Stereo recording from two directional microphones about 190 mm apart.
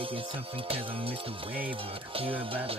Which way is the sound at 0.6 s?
30° right (ahead or behind).